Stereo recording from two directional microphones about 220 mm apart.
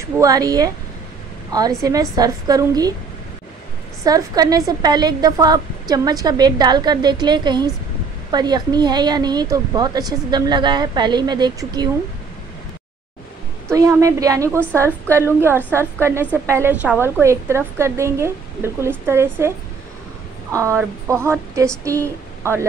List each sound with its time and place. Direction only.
0.0 s a woman's voice: 15° right (ahead or behind)
4.0 s a woman's voice: 15° right (ahead or behind)
13.7 s a woman's voice: 15° right (ahead or behind)
20.5 s a woman's voice: 15° right (ahead or behind)